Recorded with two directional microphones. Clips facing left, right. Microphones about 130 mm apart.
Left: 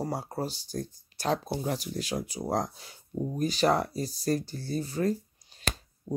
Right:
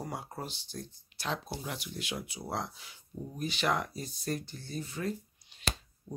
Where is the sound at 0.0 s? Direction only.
35° left (ahead or behind).